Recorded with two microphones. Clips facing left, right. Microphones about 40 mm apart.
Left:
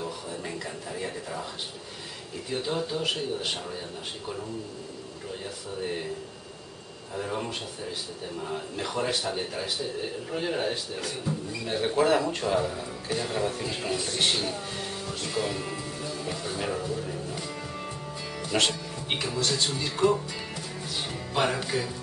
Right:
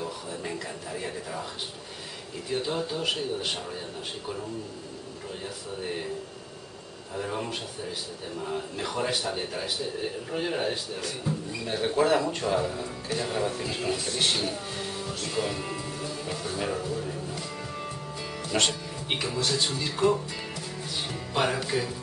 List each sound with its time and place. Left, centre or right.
0.0 s a sound: centre
2.5 s speech: centre
5.4 s speech: centre
7.2 s speech: centre
15.3 s music: centre
18.4 s speech: centre
21.1 s music: centre
21.5 s speech: centre